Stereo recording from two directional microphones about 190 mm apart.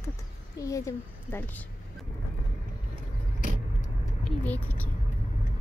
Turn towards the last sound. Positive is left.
turn(degrees=10)  # may be behind; listen again after turning